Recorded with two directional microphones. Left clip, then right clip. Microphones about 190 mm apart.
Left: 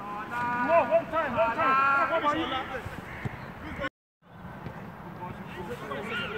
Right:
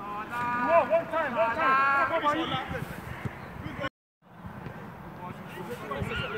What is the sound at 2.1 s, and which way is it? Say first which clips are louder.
Speech: even; 55° right (ahead or behind).